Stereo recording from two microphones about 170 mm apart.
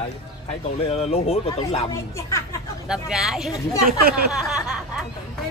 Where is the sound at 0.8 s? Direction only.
40° left (ahead or behind).